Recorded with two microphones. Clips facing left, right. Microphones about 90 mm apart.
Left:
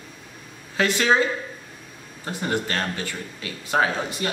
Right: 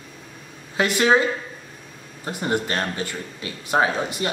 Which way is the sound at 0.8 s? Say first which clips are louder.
Right 2 dB; 15° right (ahead or behind).